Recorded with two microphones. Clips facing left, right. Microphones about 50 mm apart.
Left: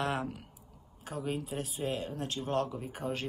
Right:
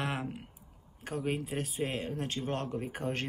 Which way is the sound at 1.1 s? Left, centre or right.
Right.